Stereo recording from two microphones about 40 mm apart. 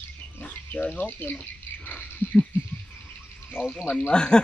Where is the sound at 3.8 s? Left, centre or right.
Left.